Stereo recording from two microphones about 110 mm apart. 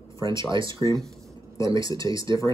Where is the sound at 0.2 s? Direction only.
30° left (ahead or behind).